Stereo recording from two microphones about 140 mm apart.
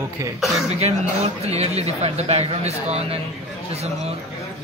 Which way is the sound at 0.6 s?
50° right (ahead or behind).